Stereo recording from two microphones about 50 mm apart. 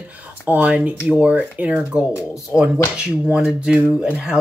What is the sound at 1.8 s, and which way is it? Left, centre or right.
Speech, centre.